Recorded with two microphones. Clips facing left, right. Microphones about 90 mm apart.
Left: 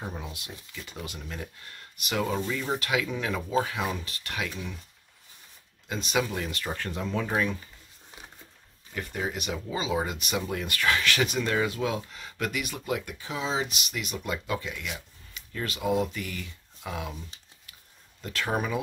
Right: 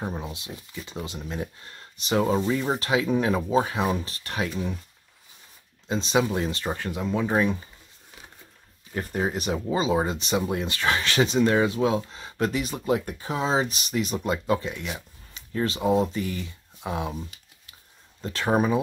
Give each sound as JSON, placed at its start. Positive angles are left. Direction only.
{"t": 0.0, "sound": "speech", "side_deg": -25}
{"t": 5.9, "sound": "speech", "side_deg": -25}
{"t": 6.9, "sound": "speech", "side_deg": -10}
{"t": 7.3, "sound": "speech", "side_deg": -25}
{"t": 8.9, "sound": "speech", "side_deg": -40}
{"t": 18.2, "sound": "speech", "side_deg": -30}